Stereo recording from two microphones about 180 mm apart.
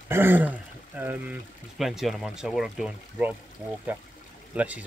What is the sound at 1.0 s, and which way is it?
Speech, 10° right (ahead or behind).